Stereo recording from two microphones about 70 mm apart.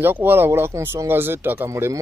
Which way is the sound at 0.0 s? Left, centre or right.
Right.